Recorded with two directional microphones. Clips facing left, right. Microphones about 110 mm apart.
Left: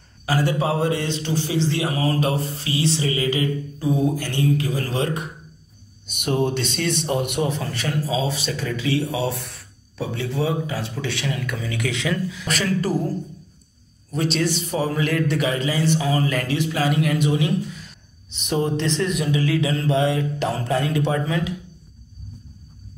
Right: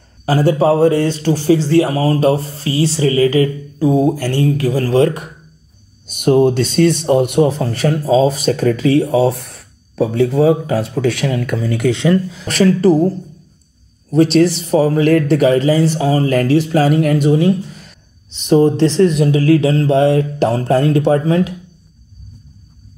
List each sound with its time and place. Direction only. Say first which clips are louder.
0.2 s a man's voice: right 9 dB; 35° right (ahead or behind)
14.1 s a man's voice: right 11 dB; 40° right (ahead or behind)